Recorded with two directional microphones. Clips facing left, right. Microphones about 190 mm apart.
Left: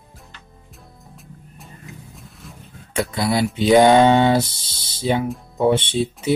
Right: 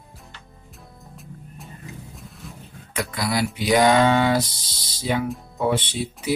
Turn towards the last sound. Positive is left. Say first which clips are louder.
# left 5 dB
turn(degrees=25)  # may be behind; listen again after turning